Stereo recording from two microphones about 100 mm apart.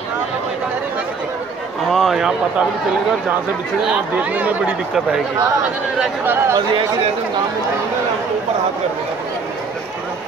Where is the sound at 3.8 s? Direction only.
15° right (ahead or behind).